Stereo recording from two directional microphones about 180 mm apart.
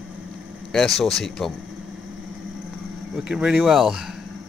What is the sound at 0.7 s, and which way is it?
Speech, centre (ahead or behind).